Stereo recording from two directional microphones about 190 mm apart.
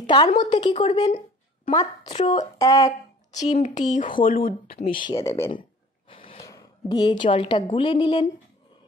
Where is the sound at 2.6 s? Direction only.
15° left (ahead or behind).